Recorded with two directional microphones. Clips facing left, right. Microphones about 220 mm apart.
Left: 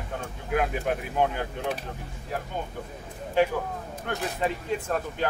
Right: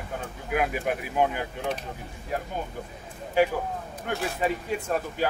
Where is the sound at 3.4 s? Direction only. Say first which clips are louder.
Right 1 dB; 10° right (ahead or behind).